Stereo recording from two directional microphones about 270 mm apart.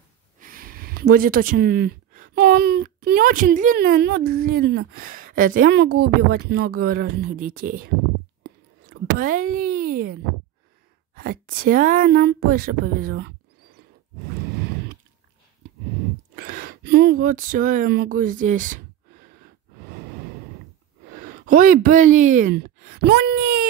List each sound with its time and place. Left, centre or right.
0.4 s speech: right
16.3 s speech: right
21.3 s speech: right